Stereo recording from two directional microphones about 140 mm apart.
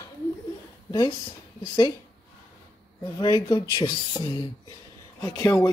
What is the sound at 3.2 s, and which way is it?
Speech, 30° left (ahead or behind).